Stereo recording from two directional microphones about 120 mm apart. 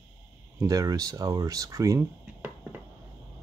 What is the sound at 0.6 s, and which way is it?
Speech, 30° right (ahead or behind).